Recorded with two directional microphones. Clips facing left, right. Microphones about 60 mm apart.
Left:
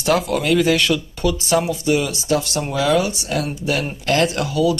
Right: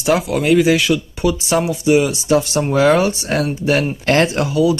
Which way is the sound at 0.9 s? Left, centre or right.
Centre.